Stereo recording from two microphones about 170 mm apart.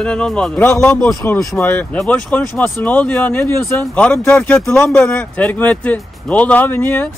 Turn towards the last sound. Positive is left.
turn(degrees=10)  # may be behind; listen again after turning